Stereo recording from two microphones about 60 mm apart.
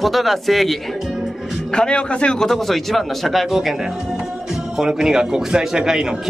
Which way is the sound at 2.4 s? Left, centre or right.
Centre.